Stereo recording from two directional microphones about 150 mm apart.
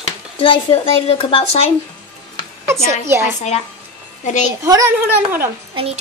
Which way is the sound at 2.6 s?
20° right (ahead or behind).